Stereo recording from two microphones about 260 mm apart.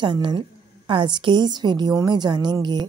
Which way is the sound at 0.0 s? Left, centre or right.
Centre.